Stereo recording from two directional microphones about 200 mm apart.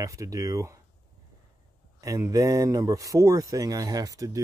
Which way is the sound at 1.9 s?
15° right (ahead or behind).